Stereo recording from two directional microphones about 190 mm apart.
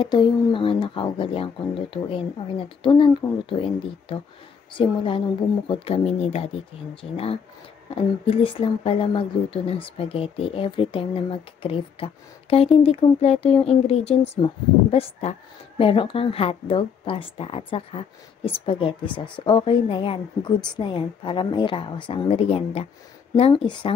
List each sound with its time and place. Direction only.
0.0 s speech: 25° left (ahead or behind)
2.8 s speech: 25° left (ahead or behind)
19.1 s speech: 5° left (ahead or behind)
19.4 s speech: 25° left (ahead or behind)